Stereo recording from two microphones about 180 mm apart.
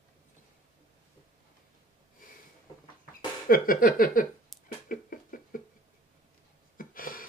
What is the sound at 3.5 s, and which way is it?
Speech, 50° left (ahead or behind).